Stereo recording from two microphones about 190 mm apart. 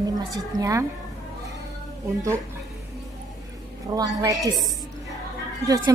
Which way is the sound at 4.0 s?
20° right (ahead or behind).